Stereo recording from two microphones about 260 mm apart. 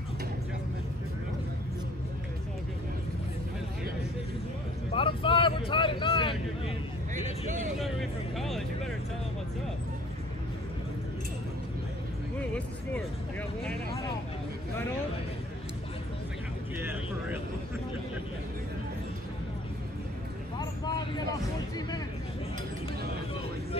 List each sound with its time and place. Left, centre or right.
4.9 s vehicle: centre
7.8 s music: centre
12.4 s music: centre
16.7 s vehicle: centre
20.5 s vehicle: centre